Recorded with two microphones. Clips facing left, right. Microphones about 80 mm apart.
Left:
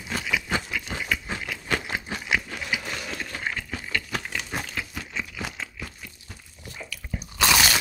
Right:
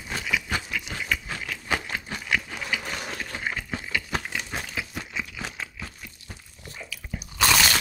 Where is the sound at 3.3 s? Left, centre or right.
Centre.